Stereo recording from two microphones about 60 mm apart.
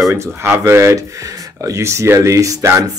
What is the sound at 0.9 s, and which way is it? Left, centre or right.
Speech, right.